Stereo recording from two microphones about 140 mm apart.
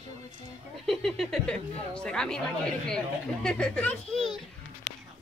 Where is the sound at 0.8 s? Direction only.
Centre (ahead or behind).